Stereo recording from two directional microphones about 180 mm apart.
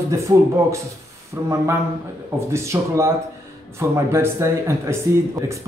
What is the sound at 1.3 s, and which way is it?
A man's voice, 15° right (ahead or behind).